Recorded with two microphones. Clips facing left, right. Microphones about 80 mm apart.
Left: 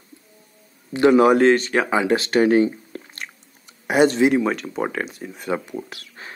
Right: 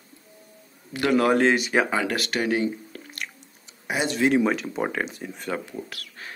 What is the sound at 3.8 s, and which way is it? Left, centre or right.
Speech, left.